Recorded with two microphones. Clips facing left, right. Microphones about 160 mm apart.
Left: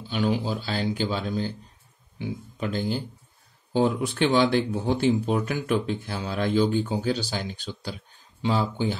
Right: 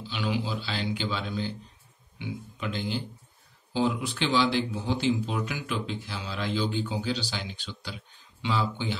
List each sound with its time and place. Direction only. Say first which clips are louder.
0.0 s speech: left 5 dB; 45° left (ahead or behind)